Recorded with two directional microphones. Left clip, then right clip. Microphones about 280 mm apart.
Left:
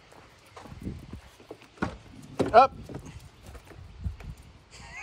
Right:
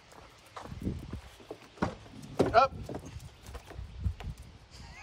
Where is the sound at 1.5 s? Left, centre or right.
Right.